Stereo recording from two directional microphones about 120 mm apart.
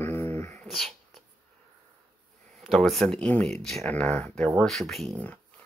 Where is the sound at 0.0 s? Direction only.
20° left (ahead or behind).